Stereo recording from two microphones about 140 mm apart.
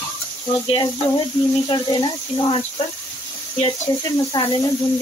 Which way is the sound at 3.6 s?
35° left (ahead or behind).